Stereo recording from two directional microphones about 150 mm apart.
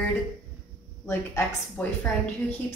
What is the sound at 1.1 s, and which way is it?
Speech, 10° left (ahead or behind).